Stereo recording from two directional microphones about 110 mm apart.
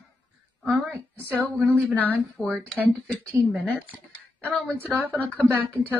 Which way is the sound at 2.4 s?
5° left (ahead or behind).